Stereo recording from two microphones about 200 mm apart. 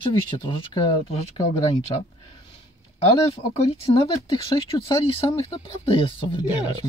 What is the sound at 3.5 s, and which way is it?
Speech, 25° left (ahead or behind).